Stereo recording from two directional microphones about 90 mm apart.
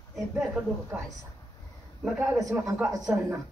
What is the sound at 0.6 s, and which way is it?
Speech, 20° right (ahead or behind).